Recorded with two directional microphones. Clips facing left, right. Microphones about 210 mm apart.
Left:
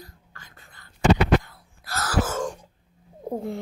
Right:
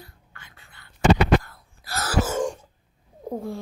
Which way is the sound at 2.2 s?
10° right (ahead or behind).